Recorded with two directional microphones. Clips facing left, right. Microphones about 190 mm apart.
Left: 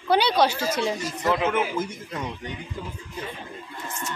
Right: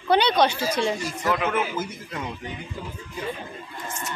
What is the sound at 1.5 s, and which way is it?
Speech, 5° right (ahead or behind).